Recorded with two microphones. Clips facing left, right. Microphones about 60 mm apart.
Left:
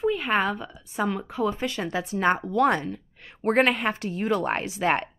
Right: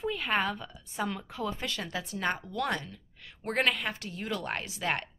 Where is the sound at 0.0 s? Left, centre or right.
Centre.